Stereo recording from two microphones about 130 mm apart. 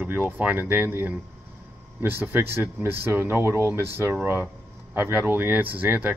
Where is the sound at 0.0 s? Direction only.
15° right (ahead or behind).